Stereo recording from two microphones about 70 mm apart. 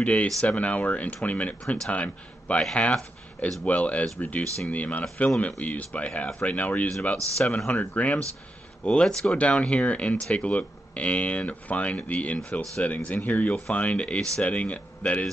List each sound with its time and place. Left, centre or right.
0.0 s speech: centre